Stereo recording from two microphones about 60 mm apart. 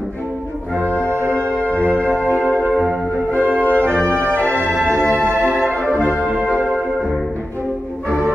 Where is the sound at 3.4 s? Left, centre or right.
Right.